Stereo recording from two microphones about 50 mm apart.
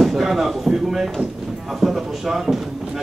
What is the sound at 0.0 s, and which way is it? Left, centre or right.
A man's voice, centre.